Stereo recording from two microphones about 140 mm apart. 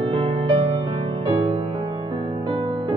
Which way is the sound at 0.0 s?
40° right (ahead or behind).